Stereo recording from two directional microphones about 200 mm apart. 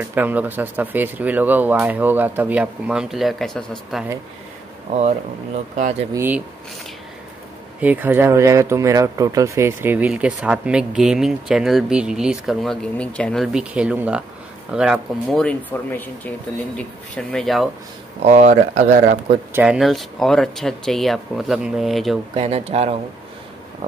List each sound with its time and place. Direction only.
0.1 s speech: 10° right (ahead or behind)
6.1 s speech: 10° right (ahead or behind)
7.8 s speech: 10° right (ahead or behind)
18.2 s speech: 35° right (ahead or behind)
19.5 s speech: 5° right (ahead or behind)
22.3 s speech: 30° right (ahead or behind)